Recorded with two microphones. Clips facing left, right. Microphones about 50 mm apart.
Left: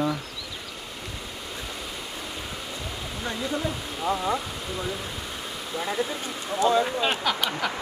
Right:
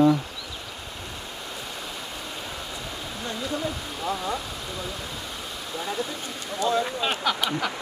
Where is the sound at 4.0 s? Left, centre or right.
Centre.